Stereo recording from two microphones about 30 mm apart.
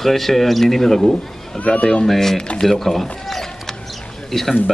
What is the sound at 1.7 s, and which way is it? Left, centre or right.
Speech, left.